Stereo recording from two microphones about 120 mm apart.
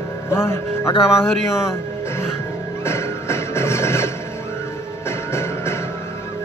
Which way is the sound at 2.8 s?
20° left (ahead or behind).